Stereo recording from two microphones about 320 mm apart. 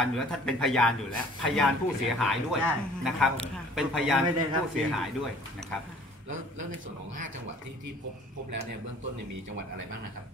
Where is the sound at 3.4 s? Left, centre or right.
Centre.